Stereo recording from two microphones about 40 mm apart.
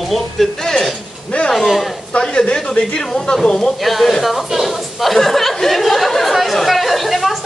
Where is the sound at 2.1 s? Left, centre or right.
Left.